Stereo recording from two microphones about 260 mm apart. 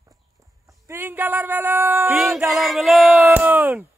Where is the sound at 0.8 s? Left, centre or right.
Centre.